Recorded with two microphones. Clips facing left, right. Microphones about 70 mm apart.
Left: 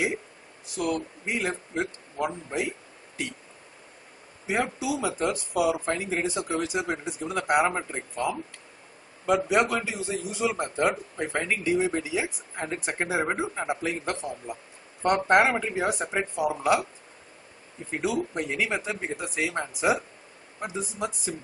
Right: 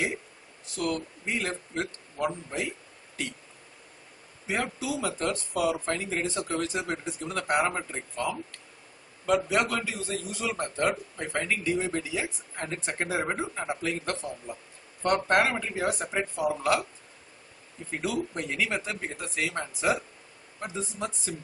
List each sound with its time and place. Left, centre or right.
0.7 s a man's voice: centre
4.5 s a man's voice: centre
17.9 s a man's voice: centre